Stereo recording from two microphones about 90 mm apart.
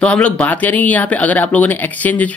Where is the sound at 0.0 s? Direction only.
15° left (ahead or behind).